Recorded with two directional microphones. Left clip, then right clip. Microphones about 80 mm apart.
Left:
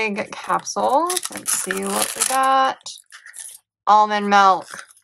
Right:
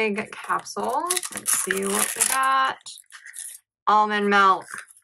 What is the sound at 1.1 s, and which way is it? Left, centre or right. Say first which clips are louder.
Speech: left 2 dB; left.